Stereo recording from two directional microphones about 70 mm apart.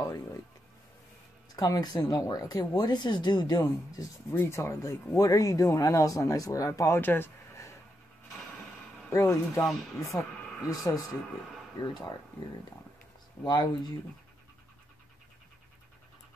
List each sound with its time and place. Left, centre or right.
0.0 s music: left
1.5 s speech: left
4.3 s speech: left
7.0 s speech: left
9.1 s speech: left
9.7 s speech: centre
10.7 s speech: left
13.4 s speech: left